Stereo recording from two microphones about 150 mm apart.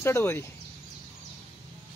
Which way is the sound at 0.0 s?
20° left (ahead or behind).